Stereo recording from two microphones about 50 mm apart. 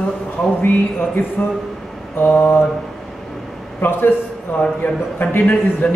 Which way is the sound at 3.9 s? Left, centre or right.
Left.